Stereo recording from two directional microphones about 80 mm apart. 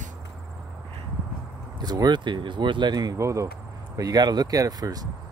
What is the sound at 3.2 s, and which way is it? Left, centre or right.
Speech, right.